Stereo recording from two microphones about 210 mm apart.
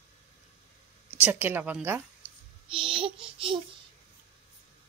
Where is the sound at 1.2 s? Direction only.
10° right (ahead or behind).